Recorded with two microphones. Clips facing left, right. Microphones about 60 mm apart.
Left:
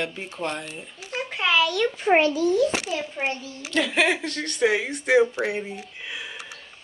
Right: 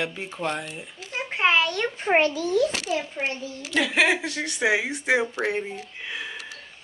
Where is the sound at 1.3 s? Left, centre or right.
Right.